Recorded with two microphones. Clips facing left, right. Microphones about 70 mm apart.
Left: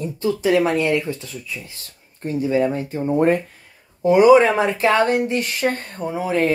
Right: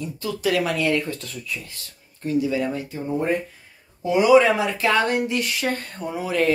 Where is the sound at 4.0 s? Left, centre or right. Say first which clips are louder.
Left 4 dB; left.